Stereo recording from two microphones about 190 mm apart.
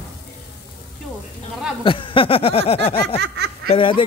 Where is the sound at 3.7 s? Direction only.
25° left (ahead or behind).